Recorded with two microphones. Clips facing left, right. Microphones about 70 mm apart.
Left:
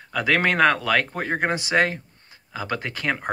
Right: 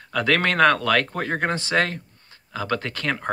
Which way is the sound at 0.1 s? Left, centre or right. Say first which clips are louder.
Even; centre.